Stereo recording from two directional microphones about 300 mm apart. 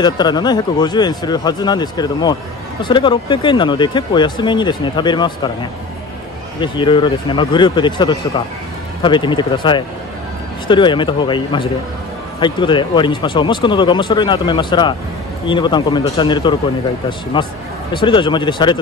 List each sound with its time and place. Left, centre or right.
0.0 s speech: centre
6.6 s speech: centre